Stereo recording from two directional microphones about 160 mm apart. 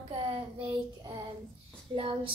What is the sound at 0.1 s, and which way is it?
Child singing, 35° right (ahead or behind).